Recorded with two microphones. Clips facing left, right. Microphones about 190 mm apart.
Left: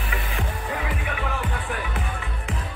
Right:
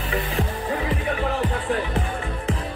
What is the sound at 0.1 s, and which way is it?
Music, 30° right (ahead or behind).